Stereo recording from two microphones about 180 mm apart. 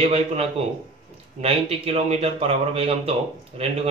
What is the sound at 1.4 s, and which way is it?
A man's voice, 35° right (ahead or behind).